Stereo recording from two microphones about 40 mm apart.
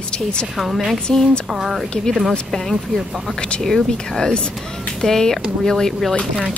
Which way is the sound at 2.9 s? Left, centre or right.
Centre.